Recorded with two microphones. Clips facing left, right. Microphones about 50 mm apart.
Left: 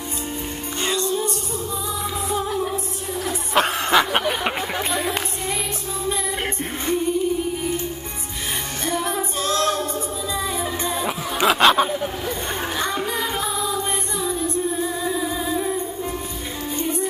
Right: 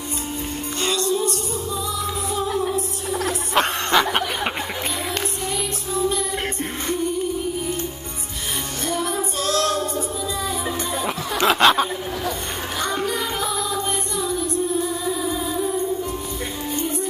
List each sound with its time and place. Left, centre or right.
0.8 s music: left
3.3 s snicker: centre
6.0 s music: centre
8.8 s female singing: left
11.4 s a sound: centre